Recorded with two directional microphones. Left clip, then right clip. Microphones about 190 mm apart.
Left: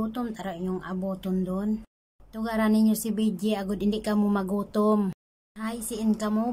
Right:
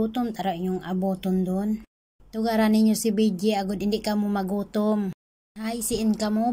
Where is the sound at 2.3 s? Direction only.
10° right (ahead or behind).